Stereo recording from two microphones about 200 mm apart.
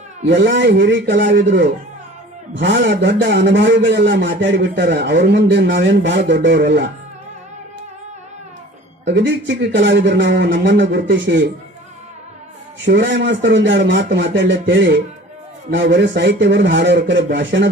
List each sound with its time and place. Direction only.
0.3 s a man's voice: 60° right (ahead or behind)
9.0 s a man's voice: 60° right (ahead or behind)
12.8 s a man's voice: 60° right (ahead or behind)